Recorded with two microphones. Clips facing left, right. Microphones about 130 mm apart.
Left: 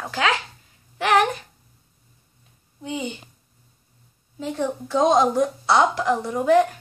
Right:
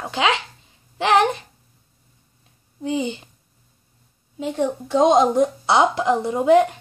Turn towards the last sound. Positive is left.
turn(degrees=-20)  # may be behind; listen again after turning